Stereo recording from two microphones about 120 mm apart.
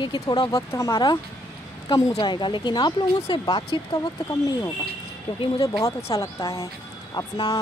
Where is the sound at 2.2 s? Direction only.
40° left (ahead or behind).